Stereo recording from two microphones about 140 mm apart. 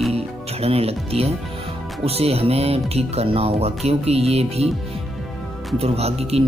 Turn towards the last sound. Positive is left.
turn(degrees=-45)  # may be behind; listen again after turning